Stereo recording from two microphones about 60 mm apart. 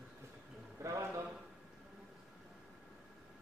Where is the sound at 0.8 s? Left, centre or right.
Right.